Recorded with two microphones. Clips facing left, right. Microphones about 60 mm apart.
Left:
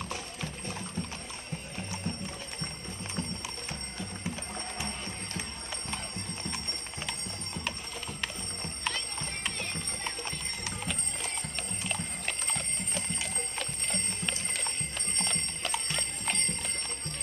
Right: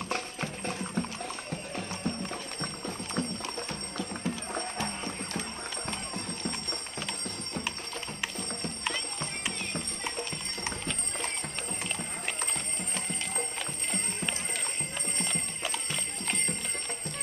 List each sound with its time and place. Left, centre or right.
0.1 s music: right
1.9 s music: right
3.2 s clip-clop: right
13.1 s horse: centre
15.9 s jingle bell: centre